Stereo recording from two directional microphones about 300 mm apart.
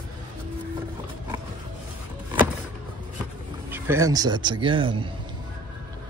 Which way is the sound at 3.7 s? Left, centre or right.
Centre.